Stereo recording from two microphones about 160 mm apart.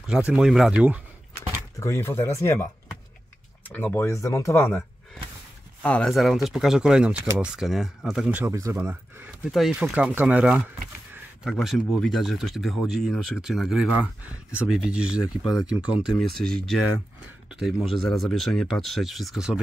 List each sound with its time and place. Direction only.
0.3 s speech: 5° right (ahead or behind)
1.8 s speech: 15° left (ahead or behind)
3.6 s speech: 15° left (ahead or behind)
8.4 s speech: 20° right (ahead or behind)
9.4 s speech: centre (ahead or behind)